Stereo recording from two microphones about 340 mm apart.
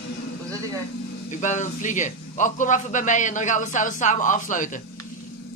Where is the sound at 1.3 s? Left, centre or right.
Left.